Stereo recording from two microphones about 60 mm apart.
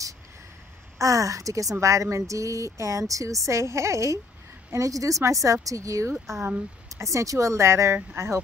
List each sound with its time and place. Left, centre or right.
0.9 s speech: right
4.7 s speech: right
6.1 s speech: centre
7.0 s speech: right